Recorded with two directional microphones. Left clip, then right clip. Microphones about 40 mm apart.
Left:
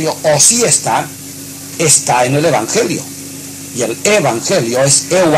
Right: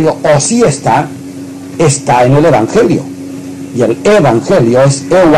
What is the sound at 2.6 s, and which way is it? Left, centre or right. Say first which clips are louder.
A man's voice: right 6 dB; right.